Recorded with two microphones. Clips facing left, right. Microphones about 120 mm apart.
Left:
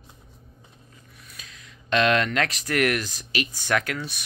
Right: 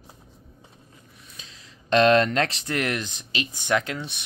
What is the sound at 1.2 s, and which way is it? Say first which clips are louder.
Speech: left 2 dB; 25° right (ahead or behind).